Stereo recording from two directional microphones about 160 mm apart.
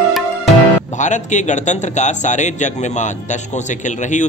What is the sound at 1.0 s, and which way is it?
A man's voice, 50° left (ahead or behind).